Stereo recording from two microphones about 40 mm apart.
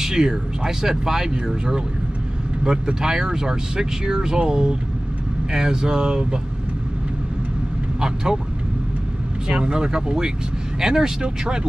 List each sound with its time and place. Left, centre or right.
0.0 s speech: centre
2.6 s speech: centre
8.0 s speech: centre
9.6 s speech: centre